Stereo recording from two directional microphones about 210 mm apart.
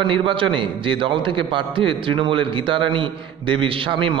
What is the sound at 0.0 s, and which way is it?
A man's voice, 25° right (ahead or behind).